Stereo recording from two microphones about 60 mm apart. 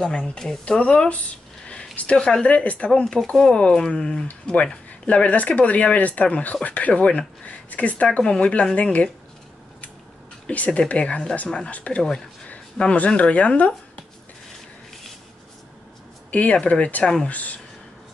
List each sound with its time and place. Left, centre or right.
0.0 s speech: centre
2.9 s speech: centre
10.4 s speech: left
16.3 s a sound: left
16.6 s speech: left